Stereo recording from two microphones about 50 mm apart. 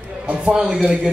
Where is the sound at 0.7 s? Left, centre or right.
Centre.